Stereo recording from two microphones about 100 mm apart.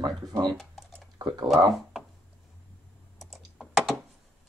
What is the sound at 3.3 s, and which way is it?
Computer keyboard, centre (ahead or behind).